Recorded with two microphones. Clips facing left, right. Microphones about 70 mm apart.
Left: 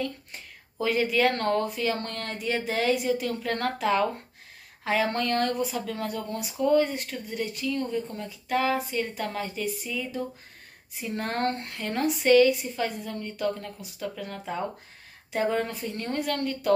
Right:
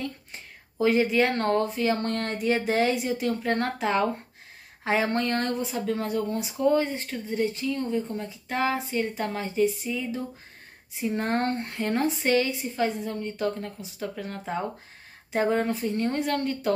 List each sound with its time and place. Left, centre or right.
0.7 s speech: right